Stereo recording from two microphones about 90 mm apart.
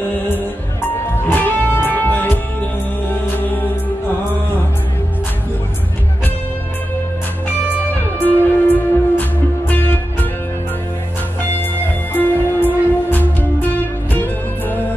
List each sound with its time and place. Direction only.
1.3 s music: 20° left (ahead or behind)
8.4 s music: 20° left (ahead or behind)
12.1 s music: 20° left (ahead or behind)